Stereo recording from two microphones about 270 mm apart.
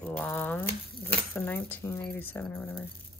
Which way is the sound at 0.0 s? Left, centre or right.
Centre.